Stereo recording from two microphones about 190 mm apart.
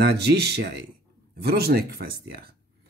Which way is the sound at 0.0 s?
60° right (ahead or behind).